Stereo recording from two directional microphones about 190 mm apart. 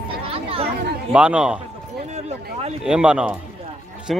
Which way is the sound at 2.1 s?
35° right (ahead or behind).